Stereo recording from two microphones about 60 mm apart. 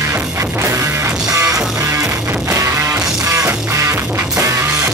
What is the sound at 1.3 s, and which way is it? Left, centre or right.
Music, right.